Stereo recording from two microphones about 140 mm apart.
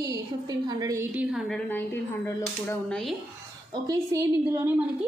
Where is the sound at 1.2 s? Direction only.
5° right (ahead or behind).